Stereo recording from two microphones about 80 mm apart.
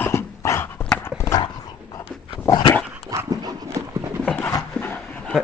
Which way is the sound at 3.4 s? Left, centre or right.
Right.